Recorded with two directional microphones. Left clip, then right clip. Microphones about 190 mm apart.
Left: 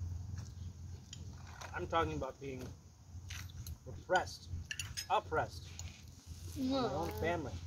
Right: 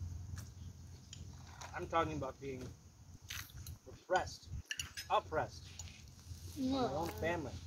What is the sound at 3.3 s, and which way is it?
Mechanisms, 60° right (ahead or behind).